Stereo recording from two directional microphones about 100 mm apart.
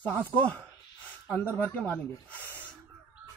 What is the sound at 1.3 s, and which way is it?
Speech, 15° left (ahead or behind).